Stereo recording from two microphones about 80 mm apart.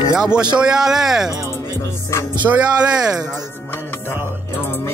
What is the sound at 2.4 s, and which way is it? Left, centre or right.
Speech, right.